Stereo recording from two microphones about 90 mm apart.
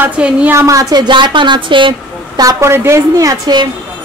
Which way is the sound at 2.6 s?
30° right (ahead or behind).